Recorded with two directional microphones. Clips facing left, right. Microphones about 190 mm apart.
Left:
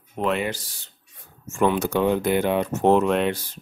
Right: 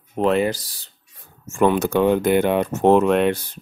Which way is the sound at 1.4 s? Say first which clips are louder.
Right 3 dB; 50° right (ahead or behind).